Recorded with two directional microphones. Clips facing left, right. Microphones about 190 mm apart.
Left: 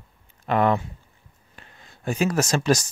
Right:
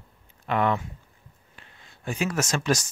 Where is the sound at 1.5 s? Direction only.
40° left (ahead or behind).